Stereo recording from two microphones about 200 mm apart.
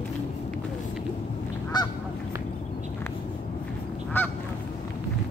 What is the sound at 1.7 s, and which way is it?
Goose, 20° left (ahead or behind).